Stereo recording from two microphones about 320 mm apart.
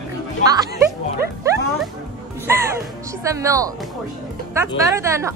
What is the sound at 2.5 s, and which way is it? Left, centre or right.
Music, centre.